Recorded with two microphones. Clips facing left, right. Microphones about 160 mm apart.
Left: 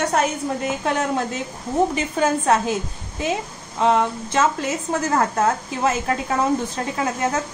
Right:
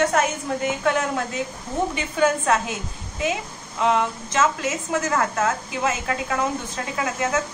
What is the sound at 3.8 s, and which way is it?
A woman's voice, 35° left (ahead or behind).